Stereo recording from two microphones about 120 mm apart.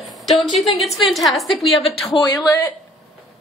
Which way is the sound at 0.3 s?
Centre (ahead or behind).